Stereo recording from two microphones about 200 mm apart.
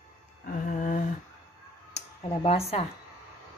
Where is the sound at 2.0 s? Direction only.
30° left (ahead or behind).